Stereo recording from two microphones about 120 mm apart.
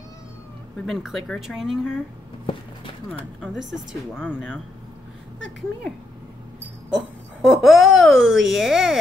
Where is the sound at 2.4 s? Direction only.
45° left (ahead or behind).